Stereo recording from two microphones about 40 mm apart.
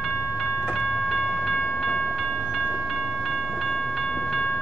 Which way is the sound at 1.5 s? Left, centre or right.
Left.